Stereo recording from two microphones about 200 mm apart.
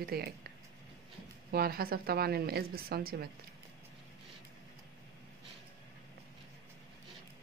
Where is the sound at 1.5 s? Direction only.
50° right (ahead or behind).